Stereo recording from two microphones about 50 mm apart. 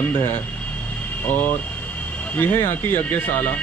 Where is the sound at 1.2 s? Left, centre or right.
Left.